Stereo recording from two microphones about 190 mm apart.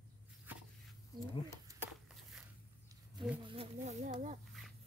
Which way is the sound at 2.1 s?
5° right (ahead or behind).